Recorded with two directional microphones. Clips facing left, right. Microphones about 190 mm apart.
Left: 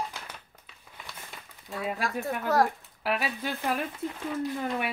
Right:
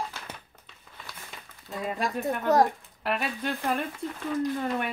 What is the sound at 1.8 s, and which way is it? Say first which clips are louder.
Speech: right 2 dB; centre (ahead or behind).